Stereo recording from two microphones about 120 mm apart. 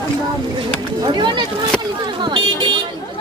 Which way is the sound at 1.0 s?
40° right (ahead or behind).